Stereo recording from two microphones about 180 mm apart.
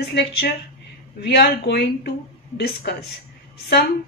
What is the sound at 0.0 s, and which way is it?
A woman's voice, 70° left (ahead or behind).